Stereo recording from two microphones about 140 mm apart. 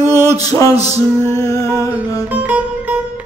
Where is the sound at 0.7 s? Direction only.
50° right (ahead or behind).